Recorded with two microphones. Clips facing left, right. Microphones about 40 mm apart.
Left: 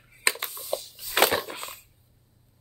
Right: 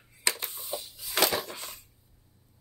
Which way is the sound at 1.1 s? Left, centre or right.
Left.